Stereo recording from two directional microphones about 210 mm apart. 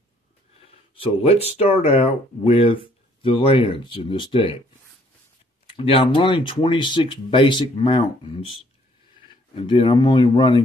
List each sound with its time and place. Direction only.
0.9 s speech: 25° left (ahead or behind)
5.7 s speech: 25° left (ahead or behind)
9.6 s speech: 25° left (ahead or behind)